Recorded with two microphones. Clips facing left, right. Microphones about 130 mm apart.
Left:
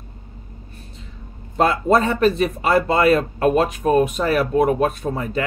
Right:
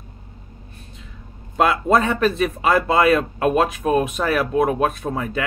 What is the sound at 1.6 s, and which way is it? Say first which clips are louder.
Speech: left 1 dB; 35° left (ahead or behind).